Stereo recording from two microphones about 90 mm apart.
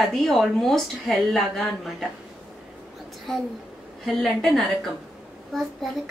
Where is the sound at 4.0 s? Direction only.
Centre (ahead or behind).